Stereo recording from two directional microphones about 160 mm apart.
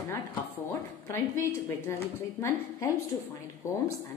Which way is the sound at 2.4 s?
15° left (ahead or behind).